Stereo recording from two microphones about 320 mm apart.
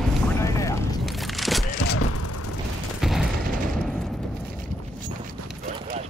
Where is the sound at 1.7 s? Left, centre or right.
Left.